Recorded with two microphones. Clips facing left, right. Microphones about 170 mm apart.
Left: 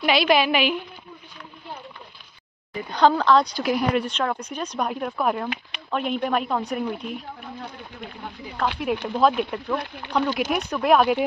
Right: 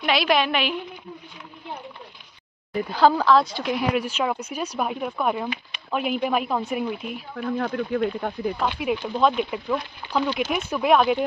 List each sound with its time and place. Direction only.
0.0 s speech: centre (ahead or behind)
2.9 s speech: 5° right (ahead or behind)
7.3 s speech: 75° right (ahead or behind)
8.5 s speech: 5° right (ahead or behind)